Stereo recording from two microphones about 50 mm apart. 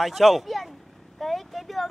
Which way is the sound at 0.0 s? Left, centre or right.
Centre.